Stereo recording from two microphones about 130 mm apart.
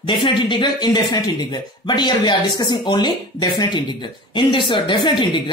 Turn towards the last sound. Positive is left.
turn(degrees=40)  # may be behind; listen again after turning